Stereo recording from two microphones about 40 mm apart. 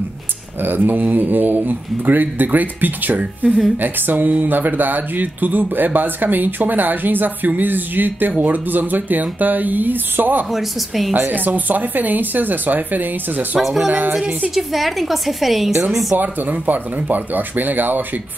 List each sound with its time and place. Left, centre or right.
0.6 s speech: right
10.5 s a woman's voice: centre
11.1 s speech: right
13.6 s a woman's voice: centre
14.1 s a woman's voice: right
14.5 s a woman's voice: centre
16.2 s speech: right